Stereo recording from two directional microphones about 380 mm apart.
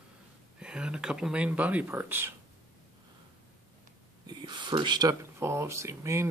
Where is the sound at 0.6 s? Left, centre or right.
Centre.